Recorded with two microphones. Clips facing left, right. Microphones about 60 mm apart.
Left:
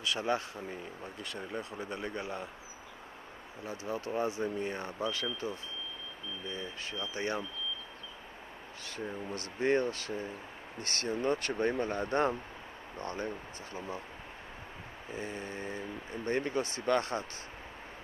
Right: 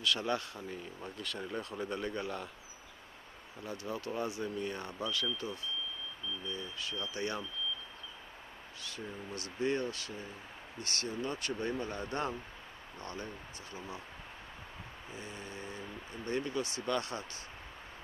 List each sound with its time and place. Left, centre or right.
0.0 s speech: left
0.7 s speech: centre
3.6 s speech: left
8.9 s speech: left
11.7 s speech: left
15.1 s speech: left